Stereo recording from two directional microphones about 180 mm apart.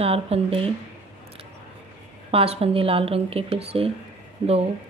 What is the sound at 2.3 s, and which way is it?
Speech, 30° right (ahead or behind).